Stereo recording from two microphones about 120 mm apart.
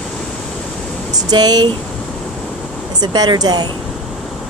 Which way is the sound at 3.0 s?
35° right (ahead or behind).